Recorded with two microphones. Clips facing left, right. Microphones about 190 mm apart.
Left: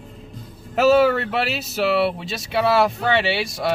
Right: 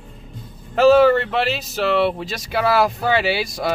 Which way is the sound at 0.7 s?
5° left (ahead or behind).